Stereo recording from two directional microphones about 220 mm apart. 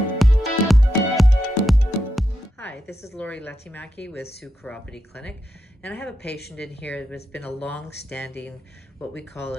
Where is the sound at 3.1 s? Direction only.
5° left (ahead or behind).